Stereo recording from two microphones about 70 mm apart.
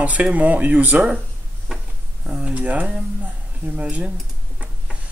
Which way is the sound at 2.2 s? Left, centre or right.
Centre.